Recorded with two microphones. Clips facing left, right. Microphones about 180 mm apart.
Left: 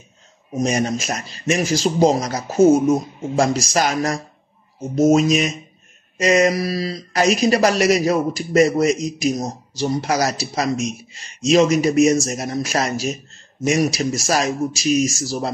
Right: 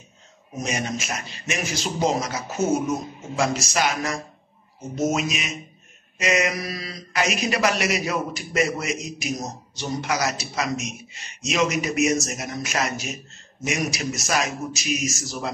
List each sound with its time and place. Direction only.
0.6 s speech: 35° left (ahead or behind)